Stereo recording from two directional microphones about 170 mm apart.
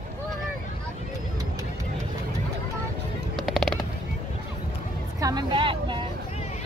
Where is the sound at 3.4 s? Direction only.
Centre (ahead or behind).